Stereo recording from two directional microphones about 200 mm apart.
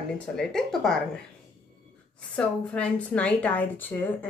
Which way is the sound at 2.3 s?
5° left (ahead or behind).